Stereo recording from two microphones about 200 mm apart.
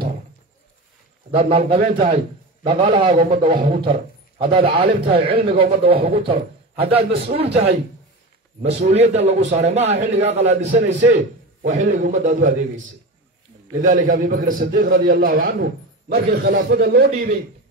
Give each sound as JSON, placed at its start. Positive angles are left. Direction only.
{"t": 1.3, "sound": "a man's voice", "side_deg": -30}
{"t": 1.8, "sound": "a man's voice", "side_deg": -45}
{"t": 2.6, "sound": "a man's voice", "side_deg": -25}
{"t": 7.1, "sound": "a man's voice", "side_deg": -55}
{"t": 7.3, "sound": "a man's voice", "side_deg": -30}
{"t": 8.6, "sound": "a man's voice", "side_deg": -30}
{"t": 13.7, "sound": "a man's voice", "side_deg": -40}